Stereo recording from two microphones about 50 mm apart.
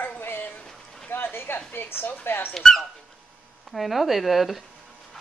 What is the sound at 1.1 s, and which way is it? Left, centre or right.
A woman's voice, left.